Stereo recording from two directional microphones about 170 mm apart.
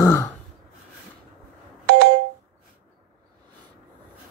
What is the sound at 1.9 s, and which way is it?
Telephone dialing, 85° right.